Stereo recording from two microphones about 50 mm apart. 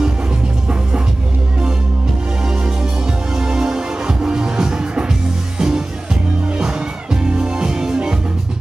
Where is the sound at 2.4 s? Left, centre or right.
Centre.